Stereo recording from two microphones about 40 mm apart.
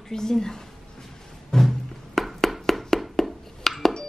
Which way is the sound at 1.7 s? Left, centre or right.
Centre.